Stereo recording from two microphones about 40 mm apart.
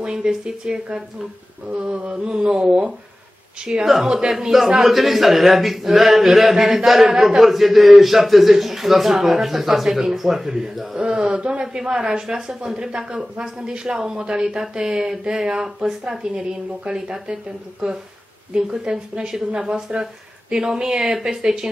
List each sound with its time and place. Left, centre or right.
0.0 s a woman's voice: centre
3.8 s a woman's voice: centre
4.1 s a woman's voice: centre
11.0 s a woman's voice: right
18.5 s a woman's voice: right